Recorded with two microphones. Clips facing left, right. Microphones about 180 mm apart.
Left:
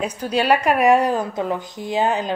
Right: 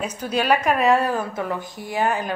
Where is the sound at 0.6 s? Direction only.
15° left (ahead or behind).